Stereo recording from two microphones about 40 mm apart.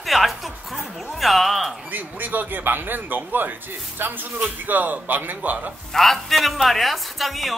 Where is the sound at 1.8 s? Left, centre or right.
Right.